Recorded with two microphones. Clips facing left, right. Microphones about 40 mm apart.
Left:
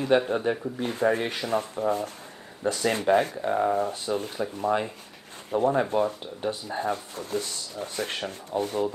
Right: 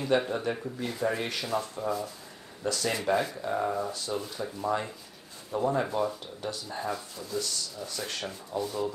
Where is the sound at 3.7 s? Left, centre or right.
Left.